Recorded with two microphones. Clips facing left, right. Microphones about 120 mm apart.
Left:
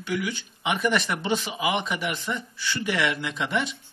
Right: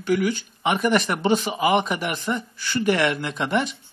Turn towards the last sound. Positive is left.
turn(degrees=-45)  # may be behind; listen again after turning